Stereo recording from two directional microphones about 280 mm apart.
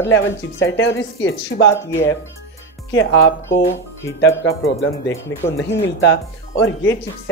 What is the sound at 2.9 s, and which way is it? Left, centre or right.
Speech, left.